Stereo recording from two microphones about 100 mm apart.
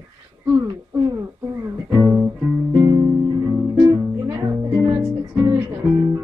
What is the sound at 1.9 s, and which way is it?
Music, 25° right (ahead or behind).